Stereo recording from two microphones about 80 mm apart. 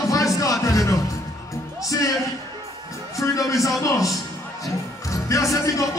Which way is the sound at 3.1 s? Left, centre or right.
Left.